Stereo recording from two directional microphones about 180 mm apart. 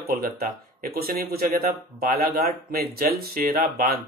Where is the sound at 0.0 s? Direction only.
55° right (ahead or behind).